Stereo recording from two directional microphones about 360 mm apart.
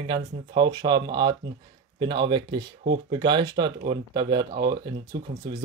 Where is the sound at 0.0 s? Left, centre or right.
Centre.